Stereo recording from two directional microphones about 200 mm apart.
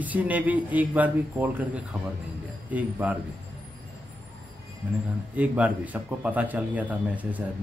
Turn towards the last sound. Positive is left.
turn(degrees=-10)  # may be behind; listen again after turning